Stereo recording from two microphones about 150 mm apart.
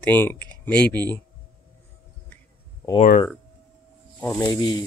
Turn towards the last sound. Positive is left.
turn(degrees=25)  # may be behind; listen again after turning